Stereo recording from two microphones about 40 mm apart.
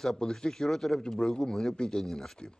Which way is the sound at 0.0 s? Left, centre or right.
Centre.